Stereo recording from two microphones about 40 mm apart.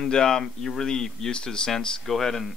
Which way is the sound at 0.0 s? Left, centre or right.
Centre.